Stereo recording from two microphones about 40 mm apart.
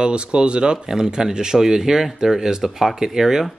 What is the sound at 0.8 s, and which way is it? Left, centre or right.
Speech, centre.